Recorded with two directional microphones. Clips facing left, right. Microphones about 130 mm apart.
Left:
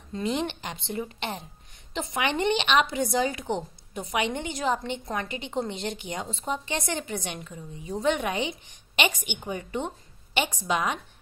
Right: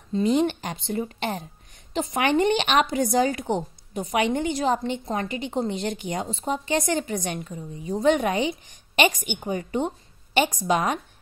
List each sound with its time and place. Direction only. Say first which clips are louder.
0.1 s a woman's voice: right 7 dB; 40° right (ahead or behind)